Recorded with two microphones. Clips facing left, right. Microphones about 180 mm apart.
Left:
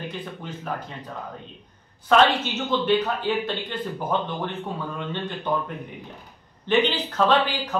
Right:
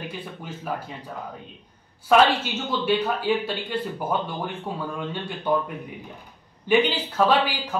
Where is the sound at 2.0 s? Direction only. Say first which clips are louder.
Even; 10° right (ahead or behind).